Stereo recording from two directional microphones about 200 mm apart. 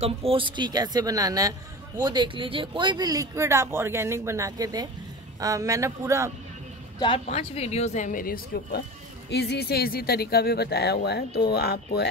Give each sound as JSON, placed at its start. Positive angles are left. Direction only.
{"t": 0.0, "sound": "a woman's voice", "side_deg": -30}
{"t": 7.0, "sound": "speech", "side_deg": 30}